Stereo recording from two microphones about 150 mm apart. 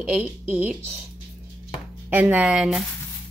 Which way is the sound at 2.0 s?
10° right (ahead or behind).